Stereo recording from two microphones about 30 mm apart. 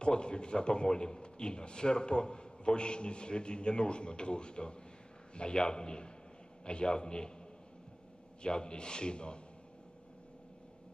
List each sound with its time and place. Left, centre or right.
0.0 s a man's voice: left
8.4 s a man's voice: left